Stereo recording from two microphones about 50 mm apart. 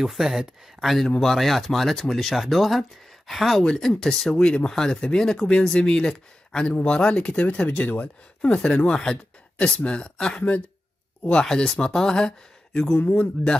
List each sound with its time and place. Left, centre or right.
0.0 s speech: centre; by 8.5 s left
8.7 s speech: centre